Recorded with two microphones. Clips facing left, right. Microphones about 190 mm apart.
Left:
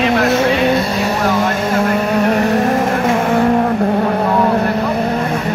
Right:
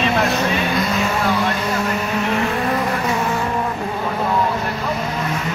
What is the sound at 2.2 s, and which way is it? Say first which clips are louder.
Vehicle: left 7 dB; 40° left (ahead or behind).